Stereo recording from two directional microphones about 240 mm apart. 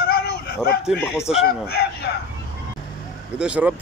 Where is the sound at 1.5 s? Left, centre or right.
Left.